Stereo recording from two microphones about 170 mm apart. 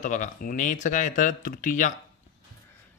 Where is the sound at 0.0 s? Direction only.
50° left (ahead or behind).